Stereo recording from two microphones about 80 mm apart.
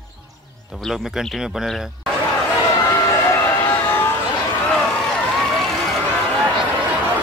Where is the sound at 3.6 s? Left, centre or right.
Left.